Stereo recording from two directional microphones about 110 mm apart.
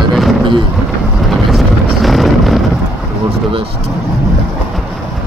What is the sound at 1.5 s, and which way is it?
Vehicle, centre (ahead or behind).